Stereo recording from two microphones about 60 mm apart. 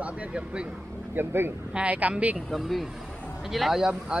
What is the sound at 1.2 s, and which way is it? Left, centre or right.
Speech, right.